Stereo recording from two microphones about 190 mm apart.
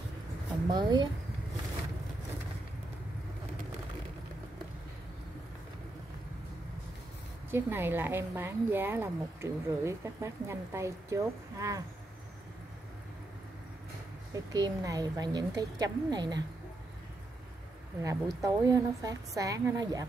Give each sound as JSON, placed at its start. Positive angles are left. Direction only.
{"t": 0.7, "sound": "speech", "side_deg": -20}
{"t": 7.5, "sound": "speech", "side_deg": -10}
{"t": 14.3, "sound": "speech", "side_deg": -20}
{"t": 18.0, "sound": "speech", "side_deg": -20}